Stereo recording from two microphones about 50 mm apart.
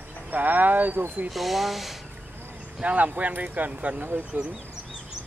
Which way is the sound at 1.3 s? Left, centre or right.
Centre.